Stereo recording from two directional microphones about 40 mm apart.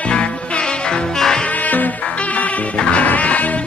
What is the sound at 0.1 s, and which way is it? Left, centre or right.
Music, left.